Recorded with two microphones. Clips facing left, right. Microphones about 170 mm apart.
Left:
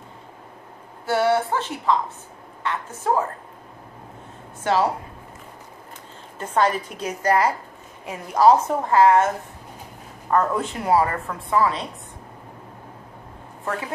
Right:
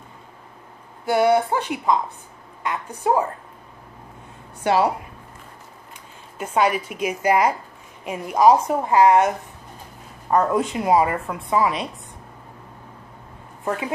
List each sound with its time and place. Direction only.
1.0 s a woman's voice: 15° right (ahead or behind)
6.3 s a woman's voice: 10° right (ahead or behind)
10.3 s a woman's voice: 15° right (ahead or behind)
13.7 s a woman's voice: 15° right (ahead or behind)